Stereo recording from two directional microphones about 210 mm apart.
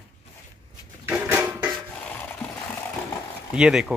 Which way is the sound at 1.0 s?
10° right (ahead or behind).